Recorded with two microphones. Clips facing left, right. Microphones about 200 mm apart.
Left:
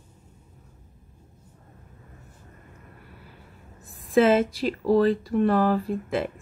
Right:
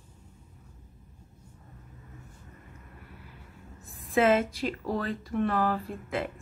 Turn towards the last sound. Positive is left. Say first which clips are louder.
# left 7 dB
turn(degrees=35)  # may be behind; listen again after turning